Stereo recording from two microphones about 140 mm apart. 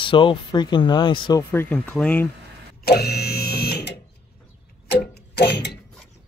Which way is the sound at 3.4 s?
90° left.